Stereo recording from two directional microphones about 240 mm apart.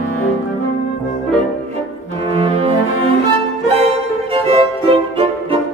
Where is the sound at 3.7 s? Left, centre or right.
Right.